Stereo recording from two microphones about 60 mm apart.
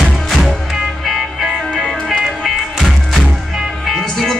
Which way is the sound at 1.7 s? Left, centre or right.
Centre.